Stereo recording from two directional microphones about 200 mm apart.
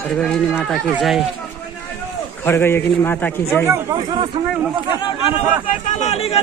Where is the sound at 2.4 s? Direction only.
10° left (ahead or behind).